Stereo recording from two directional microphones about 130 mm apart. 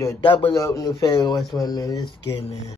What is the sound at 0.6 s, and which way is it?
Speech, 25° left (ahead or behind).